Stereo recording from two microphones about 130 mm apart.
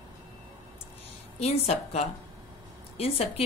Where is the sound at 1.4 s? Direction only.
55° left (ahead or behind).